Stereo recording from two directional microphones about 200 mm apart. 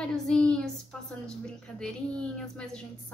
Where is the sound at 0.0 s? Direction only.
5° left (ahead or behind).